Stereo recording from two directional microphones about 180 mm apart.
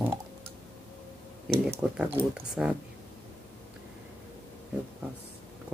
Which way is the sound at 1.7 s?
10° right (ahead or behind).